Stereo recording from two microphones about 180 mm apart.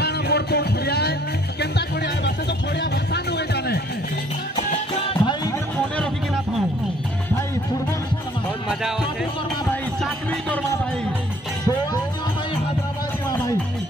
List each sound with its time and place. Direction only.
0.0 s music: 65° left (ahead or behind)
5.1 s music: 25° left (ahead or behind)